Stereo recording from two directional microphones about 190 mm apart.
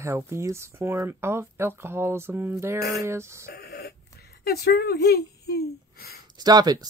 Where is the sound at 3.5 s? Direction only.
60° left (ahead or behind).